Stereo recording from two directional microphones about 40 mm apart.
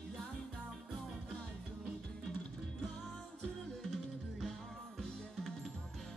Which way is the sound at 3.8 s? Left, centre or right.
Centre.